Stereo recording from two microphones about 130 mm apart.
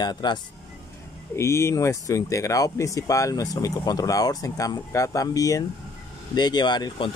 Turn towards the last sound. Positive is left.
turn(degrees=35)  # may be behind; listen again after turning